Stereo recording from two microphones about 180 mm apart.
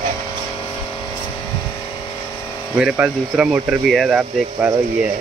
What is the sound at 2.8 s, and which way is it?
Speech, 5° right (ahead or behind).